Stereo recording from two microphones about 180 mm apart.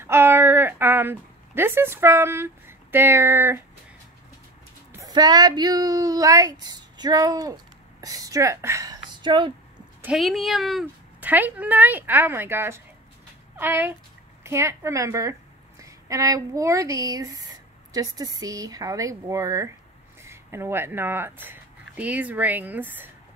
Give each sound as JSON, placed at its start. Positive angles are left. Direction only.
{"t": 0.0, "sound": "a sound", "side_deg": -15}
{"t": 4.9, "sound": "a woman's voice", "side_deg": -20}
{"t": 10.0, "sound": "speech", "side_deg": 0}